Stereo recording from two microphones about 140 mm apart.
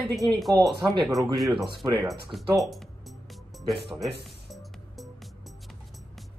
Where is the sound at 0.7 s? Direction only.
35° right (ahead or behind).